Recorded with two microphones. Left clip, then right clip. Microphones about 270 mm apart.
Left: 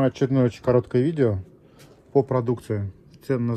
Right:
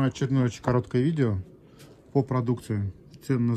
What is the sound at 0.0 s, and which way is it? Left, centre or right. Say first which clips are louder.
Speech: left 6 dB; centre.